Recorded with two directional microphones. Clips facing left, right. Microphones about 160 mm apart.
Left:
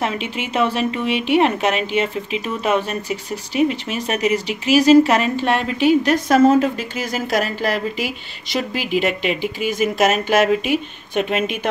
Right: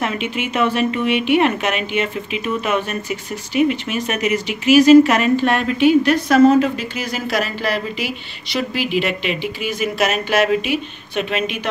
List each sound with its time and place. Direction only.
0.0 s a woman's voice: 30° left (ahead or behind); by 11.7 s 50° left (ahead or behind)